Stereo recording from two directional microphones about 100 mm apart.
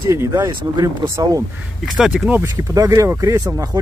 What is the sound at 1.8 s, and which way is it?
Speech, centre (ahead or behind).